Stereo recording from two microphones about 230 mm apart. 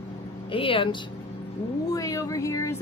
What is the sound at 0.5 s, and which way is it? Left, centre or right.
Female singing, left.